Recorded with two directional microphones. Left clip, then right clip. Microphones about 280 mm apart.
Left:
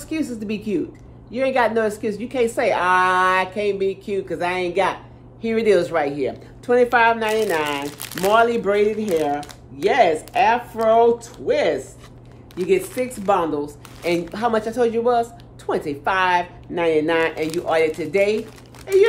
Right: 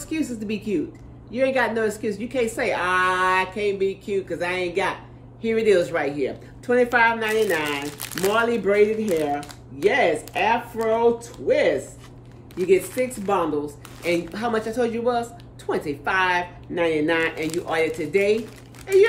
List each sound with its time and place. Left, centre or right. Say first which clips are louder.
0.1 s speech: left 2 dB; centre
9.4 s a sound: left 2 dB; centre
9.8 s speech: left 3 dB; centre